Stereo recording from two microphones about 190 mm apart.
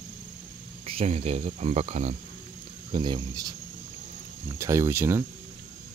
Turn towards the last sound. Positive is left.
turn(degrees=-15)  # may be behind; listen again after turning